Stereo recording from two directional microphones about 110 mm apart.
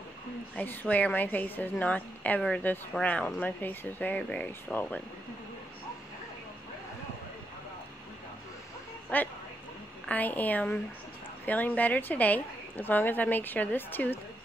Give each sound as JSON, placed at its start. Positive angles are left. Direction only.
{"t": 0.6, "sound": "a woman's voice", "side_deg": 15}
{"t": 9.1, "sound": "a woman's voice", "side_deg": 15}